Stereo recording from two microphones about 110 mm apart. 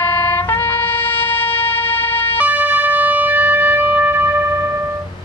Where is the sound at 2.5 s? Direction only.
15° right (ahead or behind).